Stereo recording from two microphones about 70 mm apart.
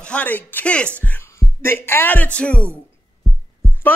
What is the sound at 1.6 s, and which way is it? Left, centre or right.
Music, left.